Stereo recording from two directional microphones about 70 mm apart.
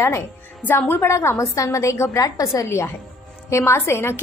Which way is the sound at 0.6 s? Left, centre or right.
Left.